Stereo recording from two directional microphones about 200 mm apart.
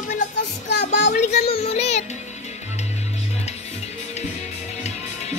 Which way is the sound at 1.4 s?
30° left (ahead or behind).